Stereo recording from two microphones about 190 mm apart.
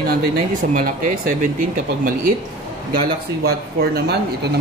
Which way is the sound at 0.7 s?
50° right (ahead or behind).